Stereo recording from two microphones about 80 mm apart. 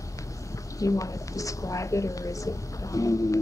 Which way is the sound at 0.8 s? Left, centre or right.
Left.